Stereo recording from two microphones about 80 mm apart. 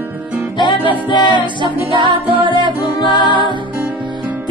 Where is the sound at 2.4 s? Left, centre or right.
Right.